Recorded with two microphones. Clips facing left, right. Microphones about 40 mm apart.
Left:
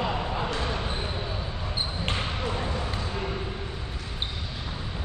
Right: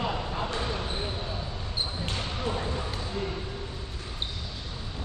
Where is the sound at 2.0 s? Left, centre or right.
Left.